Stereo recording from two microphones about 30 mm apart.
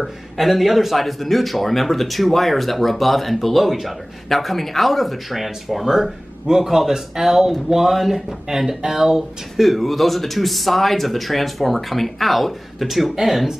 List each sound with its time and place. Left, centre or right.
0.0 s speech: centre
8.5 s speech: centre
9.6 s speech: centre